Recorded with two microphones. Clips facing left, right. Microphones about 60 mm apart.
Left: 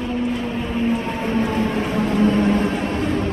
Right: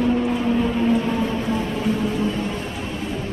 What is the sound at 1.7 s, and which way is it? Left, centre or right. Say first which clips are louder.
Vehicle: left 2 dB; left.